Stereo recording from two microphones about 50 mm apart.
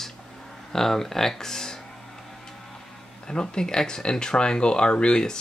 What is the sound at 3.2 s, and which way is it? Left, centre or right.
Speech, centre.